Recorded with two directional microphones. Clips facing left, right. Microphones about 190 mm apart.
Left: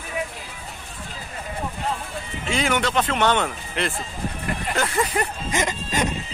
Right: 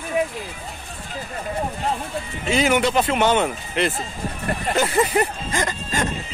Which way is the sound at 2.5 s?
5° right (ahead or behind).